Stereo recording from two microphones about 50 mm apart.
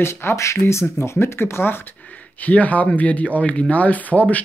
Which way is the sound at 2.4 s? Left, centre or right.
Left.